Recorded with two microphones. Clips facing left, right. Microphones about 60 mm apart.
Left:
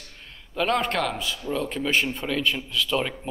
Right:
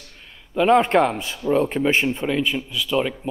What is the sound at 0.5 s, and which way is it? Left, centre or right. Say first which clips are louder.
Speech: right 8 dB; centre.